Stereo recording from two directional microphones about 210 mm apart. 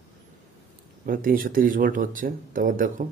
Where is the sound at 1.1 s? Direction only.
40° right (ahead or behind).